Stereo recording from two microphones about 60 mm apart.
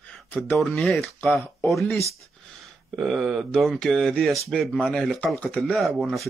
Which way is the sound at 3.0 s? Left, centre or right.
Centre.